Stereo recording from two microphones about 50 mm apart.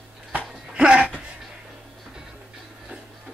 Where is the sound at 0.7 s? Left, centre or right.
Right.